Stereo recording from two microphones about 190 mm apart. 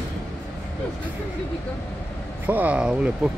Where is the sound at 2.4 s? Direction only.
10° right (ahead or behind).